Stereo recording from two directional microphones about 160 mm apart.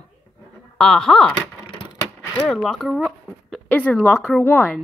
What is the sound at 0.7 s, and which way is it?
Speech, 5° left (ahead or behind).